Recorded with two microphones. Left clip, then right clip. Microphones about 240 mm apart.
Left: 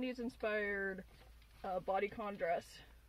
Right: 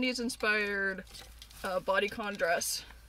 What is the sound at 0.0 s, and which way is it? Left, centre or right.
Speech, centre.